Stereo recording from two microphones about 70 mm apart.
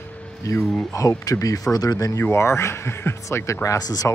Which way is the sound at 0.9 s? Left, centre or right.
Left.